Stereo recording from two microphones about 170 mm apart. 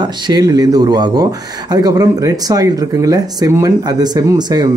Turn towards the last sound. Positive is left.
turn(degrees=-25)  # may be behind; listen again after turning